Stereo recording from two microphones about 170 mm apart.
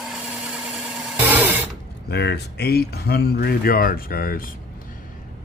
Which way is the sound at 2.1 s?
80° left.